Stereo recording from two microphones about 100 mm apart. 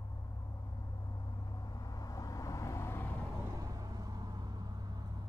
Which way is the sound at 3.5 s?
40° right (ahead or behind).